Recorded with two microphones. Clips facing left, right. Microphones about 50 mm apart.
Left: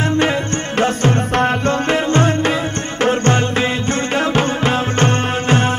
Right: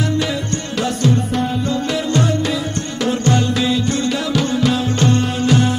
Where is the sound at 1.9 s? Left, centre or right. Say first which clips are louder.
Left 3 dB; left.